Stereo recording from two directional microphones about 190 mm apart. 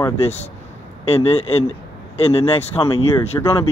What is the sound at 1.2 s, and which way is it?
Speech, 30° left (ahead or behind).